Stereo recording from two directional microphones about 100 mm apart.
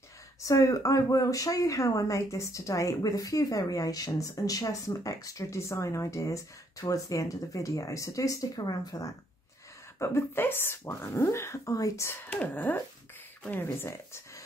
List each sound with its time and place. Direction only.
0.5 s speech: 35° left (ahead or behind)
9.9 s speech: 25° left (ahead or behind)
12.1 s speech: 15° left (ahead or behind)